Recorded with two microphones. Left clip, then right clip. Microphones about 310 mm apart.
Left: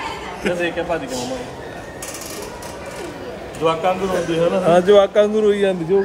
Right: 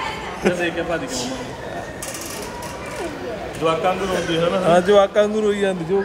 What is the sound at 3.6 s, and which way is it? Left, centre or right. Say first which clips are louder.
A man's voice: left 1 dB; left.